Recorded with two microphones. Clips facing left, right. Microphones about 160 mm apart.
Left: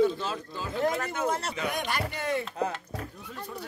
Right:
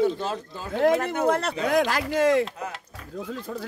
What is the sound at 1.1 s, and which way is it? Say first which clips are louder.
Speech: right 7 dB; 60° right (ahead or behind).